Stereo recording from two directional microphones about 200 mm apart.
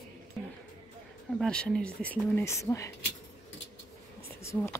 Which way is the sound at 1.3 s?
5° left (ahead or behind).